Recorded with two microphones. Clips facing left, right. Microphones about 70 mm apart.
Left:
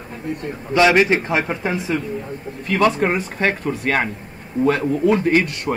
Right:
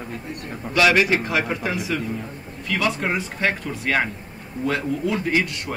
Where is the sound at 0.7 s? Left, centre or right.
Left.